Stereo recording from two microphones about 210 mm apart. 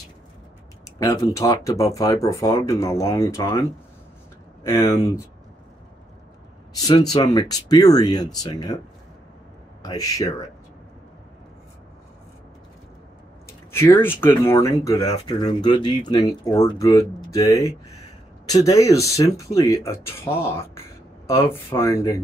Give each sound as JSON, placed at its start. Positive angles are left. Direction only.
{"t": 0.8, "sound": "speech", "side_deg": 15}
{"t": 4.6, "sound": "speech", "side_deg": 10}
{"t": 7.1, "sound": "speech", "side_deg": 20}
{"t": 9.8, "sound": "speech", "side_deg": 15}
{"t": 13.5, "sound": "speech", "side_deg": 15}